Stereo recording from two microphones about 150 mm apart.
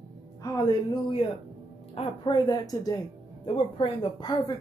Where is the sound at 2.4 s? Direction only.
25° left (ahead or behind).